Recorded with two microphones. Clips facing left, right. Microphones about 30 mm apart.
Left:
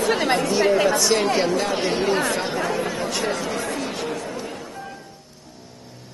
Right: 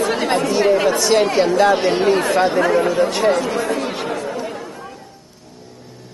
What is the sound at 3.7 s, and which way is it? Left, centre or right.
Chatter, right.